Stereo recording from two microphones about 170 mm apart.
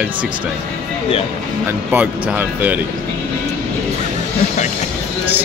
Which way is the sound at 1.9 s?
10° right (ahead or behind).